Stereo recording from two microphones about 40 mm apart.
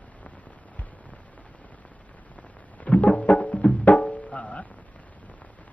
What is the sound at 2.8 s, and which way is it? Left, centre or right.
Music, left.